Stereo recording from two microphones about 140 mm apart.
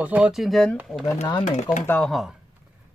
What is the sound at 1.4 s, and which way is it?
Speech, 55° left (ahead or behind).